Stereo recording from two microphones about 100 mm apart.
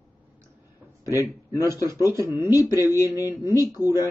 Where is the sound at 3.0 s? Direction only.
35° left (ahead or behind).